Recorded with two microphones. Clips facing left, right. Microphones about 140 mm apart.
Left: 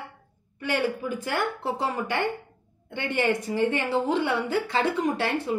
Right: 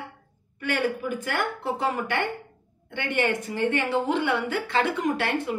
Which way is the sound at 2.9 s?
35° left (ahead or behind).